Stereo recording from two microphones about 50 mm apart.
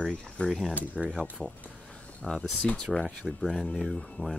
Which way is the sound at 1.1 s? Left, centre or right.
Centre.